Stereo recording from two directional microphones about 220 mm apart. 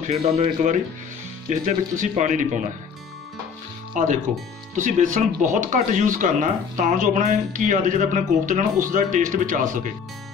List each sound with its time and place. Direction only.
0.0 s speech: 30° right (ahead or behind)
4.7 s speech: 35° right (ahead or behind)